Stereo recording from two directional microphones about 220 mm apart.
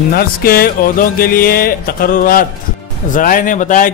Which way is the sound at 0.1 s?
45° left (ahead or behind).